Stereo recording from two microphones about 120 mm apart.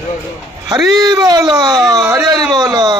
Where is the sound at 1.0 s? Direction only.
35° right (ahead or behind).